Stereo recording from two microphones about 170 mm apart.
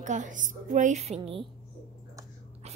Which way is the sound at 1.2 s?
30° right (ahead or behind).